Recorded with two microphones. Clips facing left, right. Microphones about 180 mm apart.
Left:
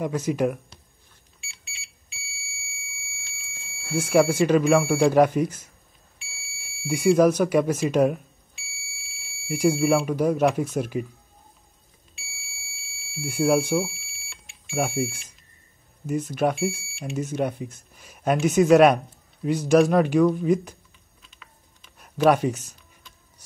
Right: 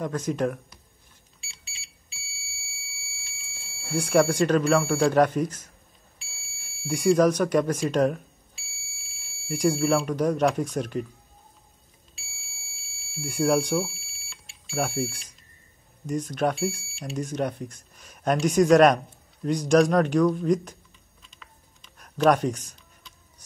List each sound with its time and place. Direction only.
0.0 s speech: 10° left (ahead or behind)
1.4 s alarm: 35° right (ahead or behind)
3.6 s a sound: 35° right (ahead or behind)
3.9 s speech: 5° left (ahead or behind)
6.9 s speech: 10° left (ahead or behind)
8.5 s alarm: 40° right (ahead or behind)
9.5 s speech: 10° left (ahead or behind)
12.4 s alarm: 40° right (ahead or behind)
13.2 s speech: 5° left (ahead or behind)
13.9 s smoke detector: 40° right (ahead or behind)
14.7 s speech: 10° left (ahead or behind)
21.2 s typing: 5° left (ahead or behind)